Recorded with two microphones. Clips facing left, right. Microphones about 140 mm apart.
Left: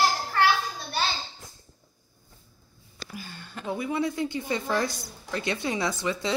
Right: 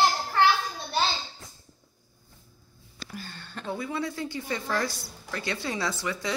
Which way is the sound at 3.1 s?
10° left (ahead or behind).